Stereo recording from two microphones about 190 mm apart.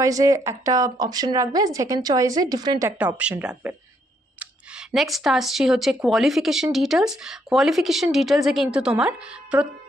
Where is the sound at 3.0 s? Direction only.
5° right (ahead or behind).